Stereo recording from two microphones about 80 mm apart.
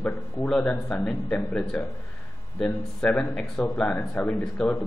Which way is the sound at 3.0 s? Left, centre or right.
Centre.